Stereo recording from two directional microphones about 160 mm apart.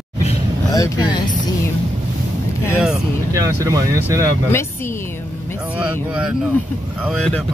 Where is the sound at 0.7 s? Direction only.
25° left (ahead or behind).